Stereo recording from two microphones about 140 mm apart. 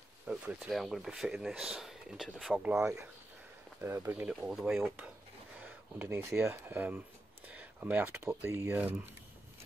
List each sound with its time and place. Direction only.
0.3 s speech: 5° right (ahead or behind)
3.8 s speech: 20° right (ahead or behind)
4.3 s speech: 5° right (ahead or behind)
5.6 s speech: 10° right (ahead or behind)